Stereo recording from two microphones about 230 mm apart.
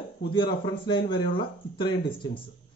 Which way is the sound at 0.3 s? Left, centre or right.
Centre.